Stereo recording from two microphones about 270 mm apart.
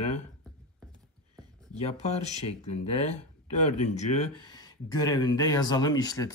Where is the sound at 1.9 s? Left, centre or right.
Left.